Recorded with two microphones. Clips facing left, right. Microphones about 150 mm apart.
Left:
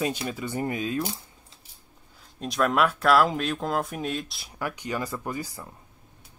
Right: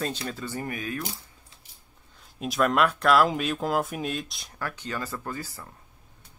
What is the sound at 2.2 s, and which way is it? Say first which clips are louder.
Speech: right 1 dB; centre (ahead or behind).